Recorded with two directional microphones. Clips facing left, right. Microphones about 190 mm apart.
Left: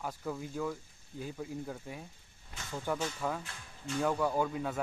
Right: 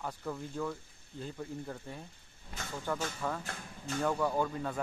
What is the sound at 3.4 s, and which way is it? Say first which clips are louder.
Speech: right 2 dB; 45° right (ahead or behind).